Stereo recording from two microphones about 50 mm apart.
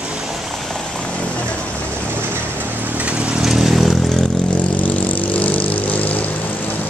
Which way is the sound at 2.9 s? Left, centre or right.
Right.